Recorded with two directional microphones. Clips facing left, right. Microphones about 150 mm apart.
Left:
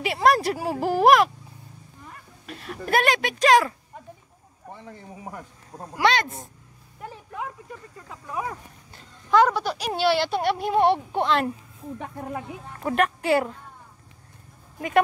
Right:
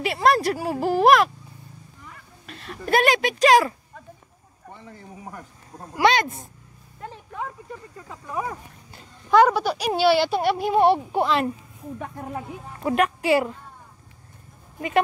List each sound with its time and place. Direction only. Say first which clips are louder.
0.0 s speech: even; 15° left (ahead or behind)
2.4 s speech: even; 10° left (ahead or behind); by 3.7 s 5° right (ahead or behind)
5.9 s speech: right 3 dB; 10° right (ahead or behind)
7.0 s a sound: right 1 dB; 5° left (ahead or behind)
8.1 s speech: right 2 dB; centre (ahead or behind)
9.3 s speech: right 3 dB; 10° right (ahead or behind)
12.6 s speech: right 2 dB; 5° right (ahead or behind)